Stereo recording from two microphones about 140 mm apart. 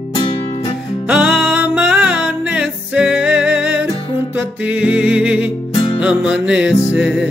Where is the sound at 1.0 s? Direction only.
5° right (ahead or behind).